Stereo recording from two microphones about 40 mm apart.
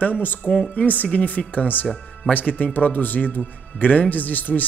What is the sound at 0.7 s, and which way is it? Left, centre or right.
Speech, left.